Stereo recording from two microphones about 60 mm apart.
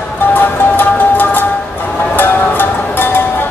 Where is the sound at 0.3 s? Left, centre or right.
Left.